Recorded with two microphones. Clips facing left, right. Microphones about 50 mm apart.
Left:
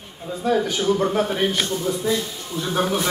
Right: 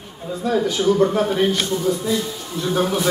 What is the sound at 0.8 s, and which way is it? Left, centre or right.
Speech, centre.